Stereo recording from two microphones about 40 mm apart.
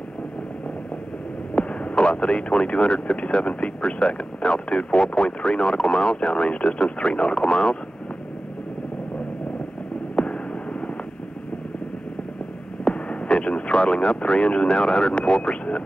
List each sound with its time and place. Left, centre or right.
1.5 s speech: left
10.1 s a sound: left
12.8 s speech: left